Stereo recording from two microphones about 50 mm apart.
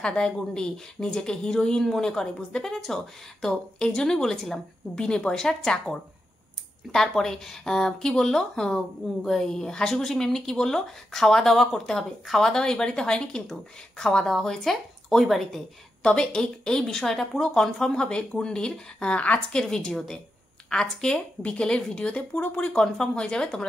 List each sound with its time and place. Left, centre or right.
0.0 s speech: centre
4.9 s speech: centre
16.0 s speech: centre
19.5 s speech: centre
21.4 s speech: left